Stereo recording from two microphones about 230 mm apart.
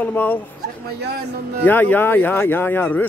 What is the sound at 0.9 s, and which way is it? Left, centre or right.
Speech, right.